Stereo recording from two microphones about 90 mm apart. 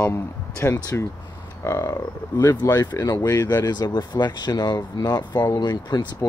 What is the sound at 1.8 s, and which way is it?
Speech, 40° left (ahead or behind).